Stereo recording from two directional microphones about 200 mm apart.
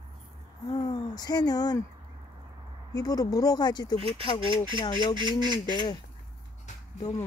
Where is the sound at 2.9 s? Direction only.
20° left (ahead or behind).